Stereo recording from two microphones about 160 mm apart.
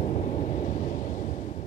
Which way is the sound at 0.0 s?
45° left (ahead or behind).